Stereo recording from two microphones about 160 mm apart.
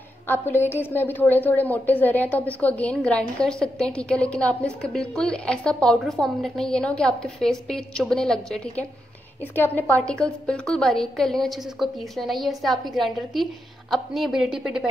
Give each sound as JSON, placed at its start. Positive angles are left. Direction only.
{"t": 0.3, "sound": "a woman's voice", "side_deg": 15}